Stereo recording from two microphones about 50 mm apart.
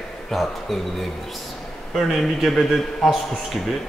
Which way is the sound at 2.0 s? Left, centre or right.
Centre.